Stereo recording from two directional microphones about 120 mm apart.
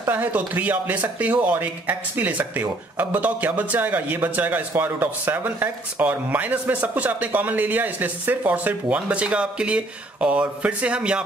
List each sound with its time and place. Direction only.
0.0 s speech: 15° right (ahead or behind)